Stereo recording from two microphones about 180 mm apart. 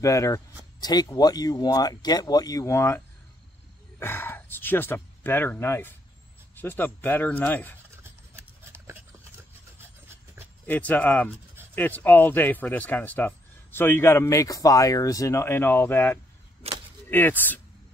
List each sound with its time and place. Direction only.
0.0 s speech: 15° left (ahead or behind)
4.0 s speech: 10° left (ahead or behind)
7.9 s a sound: 15° right (ahead or behind)
9.8 s rub: 15° right (ahead or behind)
10.7 s speech: 10° left (ahead or behind)